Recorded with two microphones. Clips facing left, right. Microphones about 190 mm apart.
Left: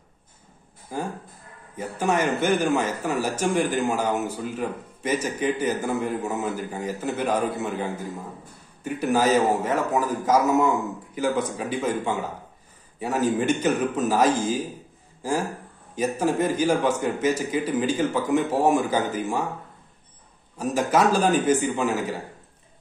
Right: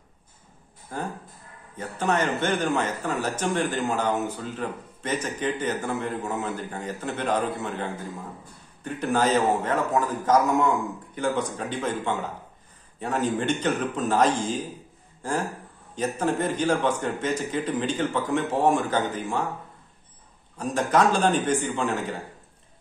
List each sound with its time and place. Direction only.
0.9 s a man's voice: 10° left (ahead or behind)
15.9 s a man's voice: 10° left (ahead or behind)
20.5 s a man's voice: 10° left (ahead or behind)